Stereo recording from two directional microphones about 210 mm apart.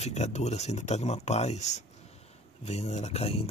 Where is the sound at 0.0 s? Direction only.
30° left (ahead or behind).